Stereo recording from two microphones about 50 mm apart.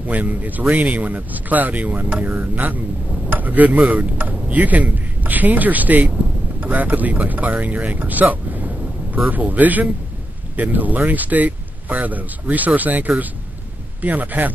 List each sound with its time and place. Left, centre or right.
0.0 s speech: right